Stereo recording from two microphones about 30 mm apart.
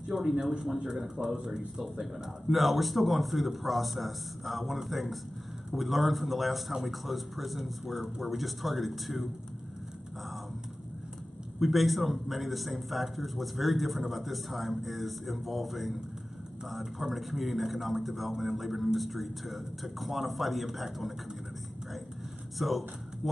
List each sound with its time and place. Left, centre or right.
0.2 s speech: centre
1.8 s a man's voice: centre
11.6 s a man's voice: centre
22.6 s a man's voice: centre